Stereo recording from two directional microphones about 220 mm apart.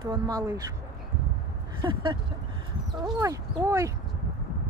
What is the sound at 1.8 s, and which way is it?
Speech, 20° right (ahead or behind).